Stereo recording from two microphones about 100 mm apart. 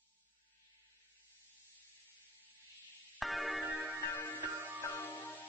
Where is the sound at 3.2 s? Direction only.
Centre (ahead or behind).